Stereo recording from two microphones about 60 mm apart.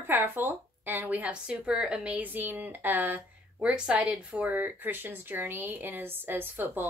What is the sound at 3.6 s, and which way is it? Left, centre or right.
Speech, centre.